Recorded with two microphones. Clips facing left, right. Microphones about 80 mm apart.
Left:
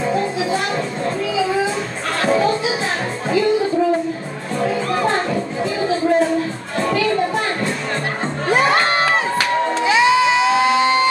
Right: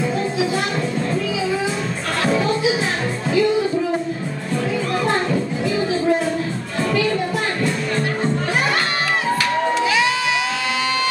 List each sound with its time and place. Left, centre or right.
8.5 s crowd: left
9.8 s music: left